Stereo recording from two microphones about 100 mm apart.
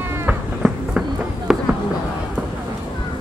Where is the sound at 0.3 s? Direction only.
10° right (ahead or behind).